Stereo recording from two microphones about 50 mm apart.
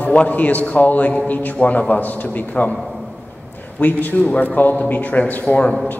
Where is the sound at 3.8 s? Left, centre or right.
Left.